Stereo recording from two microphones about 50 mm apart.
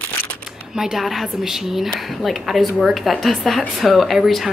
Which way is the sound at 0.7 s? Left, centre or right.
Centre.